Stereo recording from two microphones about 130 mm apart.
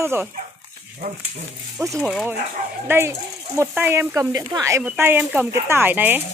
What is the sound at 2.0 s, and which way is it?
Speech, 5° right (ahead or behind).